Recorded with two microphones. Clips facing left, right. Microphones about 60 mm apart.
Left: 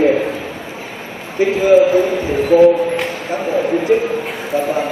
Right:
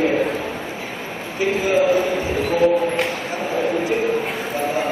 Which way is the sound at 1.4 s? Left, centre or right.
Left.